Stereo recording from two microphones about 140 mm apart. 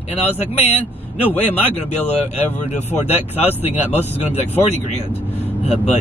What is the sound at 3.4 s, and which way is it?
Speech, 50° left (ahead or behind).